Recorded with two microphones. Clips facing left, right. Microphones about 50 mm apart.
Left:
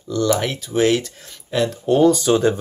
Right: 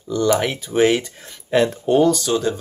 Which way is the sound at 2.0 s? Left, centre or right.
Centre.